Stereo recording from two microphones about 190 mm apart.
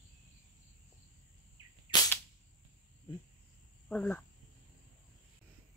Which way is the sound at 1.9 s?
20° left (ahead or behind).